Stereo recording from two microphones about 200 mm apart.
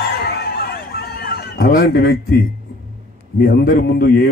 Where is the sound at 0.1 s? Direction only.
50° left (ahead or behind).